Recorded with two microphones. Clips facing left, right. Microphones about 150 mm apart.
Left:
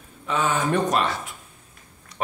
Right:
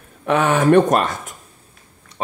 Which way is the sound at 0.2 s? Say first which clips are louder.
Right 7 dB; 70° right (ahead or behind).